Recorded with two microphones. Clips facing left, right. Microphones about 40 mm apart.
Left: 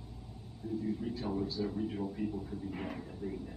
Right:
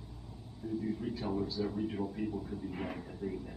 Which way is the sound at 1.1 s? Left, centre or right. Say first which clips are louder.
Even; centre.